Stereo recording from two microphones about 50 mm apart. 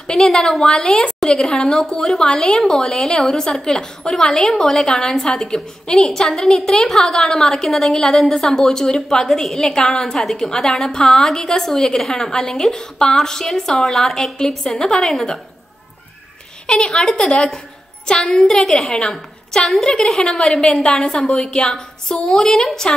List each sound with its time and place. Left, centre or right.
0.2 s a woman's voice: centre
16.6 s a woman's voice: centre